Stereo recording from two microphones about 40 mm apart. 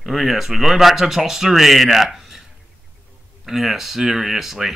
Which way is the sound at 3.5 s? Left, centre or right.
Centre.